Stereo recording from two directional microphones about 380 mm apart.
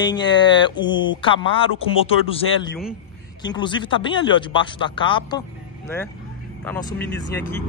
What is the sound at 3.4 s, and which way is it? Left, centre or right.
Speech, centre.